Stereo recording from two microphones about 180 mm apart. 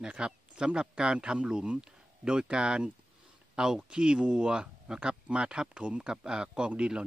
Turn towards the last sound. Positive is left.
turn(degrees=-5)  # may be behind; listen again after turning